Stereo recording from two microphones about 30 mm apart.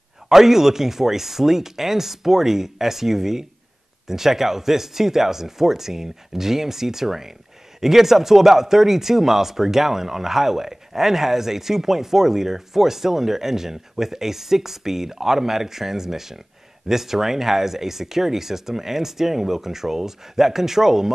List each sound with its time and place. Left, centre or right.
0.3 s speech: centre